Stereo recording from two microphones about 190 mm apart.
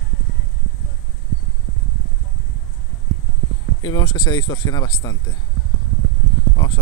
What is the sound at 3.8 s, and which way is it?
Speech, 25° left (ahead or behind).